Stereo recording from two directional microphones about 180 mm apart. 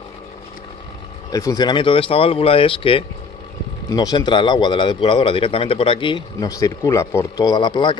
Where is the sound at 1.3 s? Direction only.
20° left (ahead or behind).